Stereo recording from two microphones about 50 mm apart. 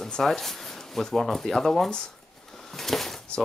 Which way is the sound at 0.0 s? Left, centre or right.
Centre.